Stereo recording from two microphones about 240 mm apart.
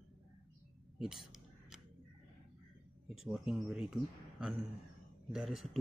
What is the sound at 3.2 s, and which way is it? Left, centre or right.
Speech, centre.